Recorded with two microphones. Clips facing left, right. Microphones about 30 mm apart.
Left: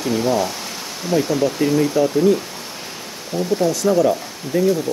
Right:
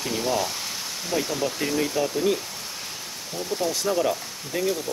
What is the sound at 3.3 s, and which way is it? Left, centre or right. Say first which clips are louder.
Speech: left 8 dB; left.